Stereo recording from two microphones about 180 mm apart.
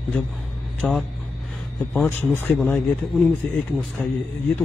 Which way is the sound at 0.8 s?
5° left (ahead or behind).